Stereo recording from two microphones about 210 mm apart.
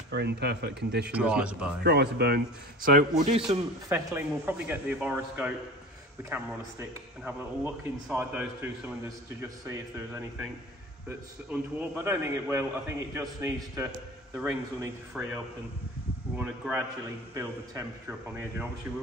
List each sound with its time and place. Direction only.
0.1 s speech: 55° right (ahead or behind)
1.1 s speech: 5° right (ahead or behind)
1.8 s speech: 50° right (ahead or behind); by 3.4 s 35° right (ahead or behind)
3.4 s speech: 10° right (ahead or behind)
15.2 s speech: centre (ahead or behind)
16.3 s speech: 10° right (ahead or behind)